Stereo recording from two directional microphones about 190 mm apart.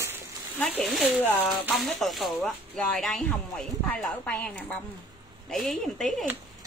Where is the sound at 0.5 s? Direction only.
5° left (ahead or behind).